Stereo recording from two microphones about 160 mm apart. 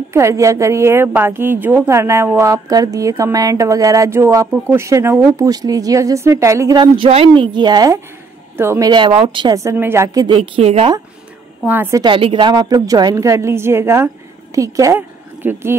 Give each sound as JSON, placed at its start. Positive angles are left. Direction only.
{"t": 0.1, "sound": "a woman's voice", "side_deg": -20}
{"t": 6.8, "sound": "a woman's voice", "side_deg": -35}
{"t": 11.6, "sound": "a woman's voice", "side_deg": -15}
{"t": 12.0, "sound": "a woman's voice", "side_deg": -35}